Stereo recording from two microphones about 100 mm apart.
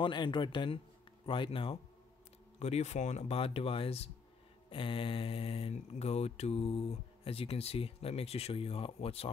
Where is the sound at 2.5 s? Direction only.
90° left.